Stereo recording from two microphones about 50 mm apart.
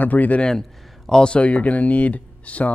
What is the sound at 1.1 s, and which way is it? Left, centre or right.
Speech, centre.